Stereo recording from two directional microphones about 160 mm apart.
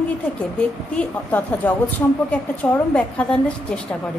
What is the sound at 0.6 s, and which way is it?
A woman's voice, 10° left (ahead or behind).